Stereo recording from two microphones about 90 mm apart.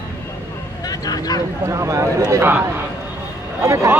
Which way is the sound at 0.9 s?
45° left (ahead or behind).